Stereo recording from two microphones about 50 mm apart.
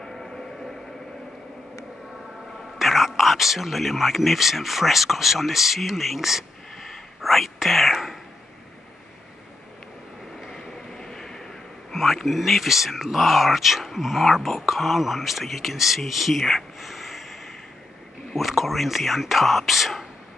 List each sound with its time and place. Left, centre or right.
0.0 s a sound: centre
2.8 s speech: centre
6.9 s whispering: centre
10.4 s vehicle: centre
11.9 s speech: centre
16.1 s a sound: centre
18.3 s speech: centre